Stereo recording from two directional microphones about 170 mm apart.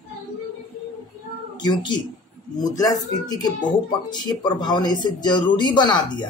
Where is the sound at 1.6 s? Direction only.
25° left (ahead or behind).